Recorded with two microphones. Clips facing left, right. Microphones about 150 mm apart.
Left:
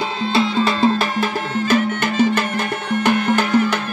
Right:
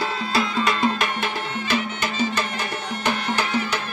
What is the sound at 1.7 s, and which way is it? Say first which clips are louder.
Music: left 8 dB; 55° left (ahead or behind).